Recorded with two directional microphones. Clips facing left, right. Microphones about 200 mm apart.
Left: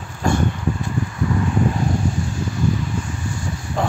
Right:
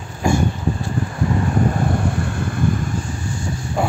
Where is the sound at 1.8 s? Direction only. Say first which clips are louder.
Right 1 dB; 60° right (ahead or behind).